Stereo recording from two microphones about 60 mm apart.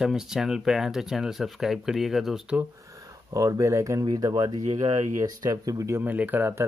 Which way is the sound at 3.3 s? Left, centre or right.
Right.